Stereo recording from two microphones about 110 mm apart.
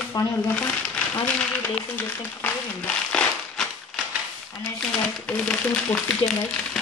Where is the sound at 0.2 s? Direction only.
35° left (ahead or behind).